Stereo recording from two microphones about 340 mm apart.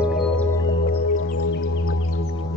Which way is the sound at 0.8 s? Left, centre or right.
Left.